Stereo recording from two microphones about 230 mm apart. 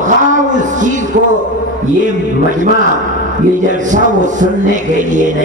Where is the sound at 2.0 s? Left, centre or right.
Right.